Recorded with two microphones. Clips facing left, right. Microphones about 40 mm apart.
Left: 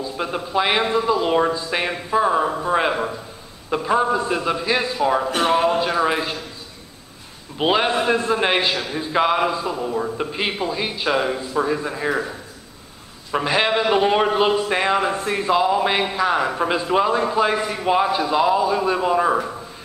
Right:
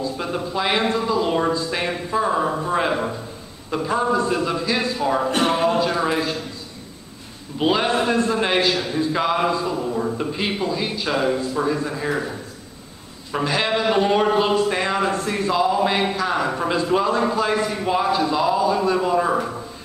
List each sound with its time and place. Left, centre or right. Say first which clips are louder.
0.0 s a sound: even; centre
0.5 s a man's voice: left 2 dB; centre
5.2 s speech: left 1 dB; centre
5.8 s a man's voice: left 1 dB; centre
7.5 s a man's voice: left 1 dB; centre
19.3 s speech: even; centre